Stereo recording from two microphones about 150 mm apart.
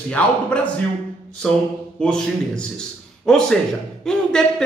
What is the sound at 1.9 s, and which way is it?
Speech, 5° left (ahead or behind).